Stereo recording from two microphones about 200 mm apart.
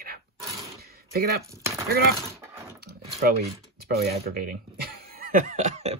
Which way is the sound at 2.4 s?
15° right (ahead or behind).